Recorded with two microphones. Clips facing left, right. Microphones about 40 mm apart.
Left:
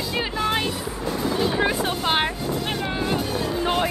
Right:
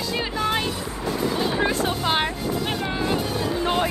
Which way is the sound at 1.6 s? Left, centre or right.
Centre.